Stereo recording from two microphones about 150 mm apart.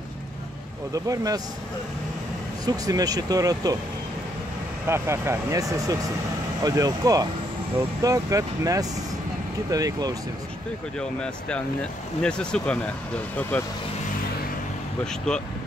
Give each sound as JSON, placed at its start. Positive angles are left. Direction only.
{"t": 0.9, "sound": "speech", "side_deg": -25}
{"t": 2.6, "sound": "speech", "side_deg": -25}
{"t": 4.8, "sound": "speech", "side_deg": -15}
{"t": 11.0, "sound": "speech", "side_deg": 5}